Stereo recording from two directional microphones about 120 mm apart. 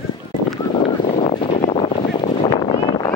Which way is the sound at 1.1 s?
50° left (ahead or behind).